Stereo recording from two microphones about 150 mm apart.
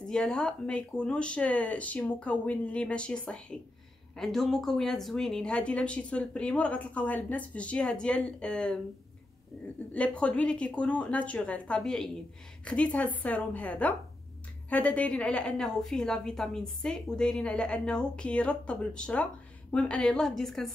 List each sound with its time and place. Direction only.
0.0 s speech: 5° left (ahead or behind)
9.9 s a woman's voice: 10° left (ahead or behind)